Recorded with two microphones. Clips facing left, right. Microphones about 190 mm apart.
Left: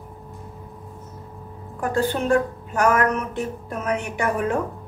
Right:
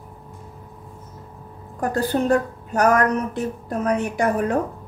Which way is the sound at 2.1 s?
40° right (ahead or behind).